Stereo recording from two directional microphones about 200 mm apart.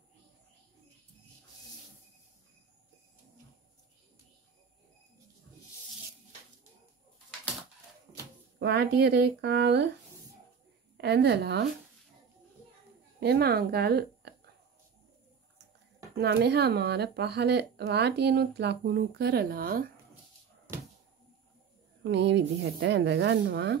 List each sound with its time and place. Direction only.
8.5 s speech: 55° right (ahead or behind)
11.0 s speech: 55° right (ahead or behind)
13.2 s speech: 50° right (ahead or behind)
16.2 s speech: 55° right (ahead or behind)
22.0 s speech: 60° right (ahead or behind)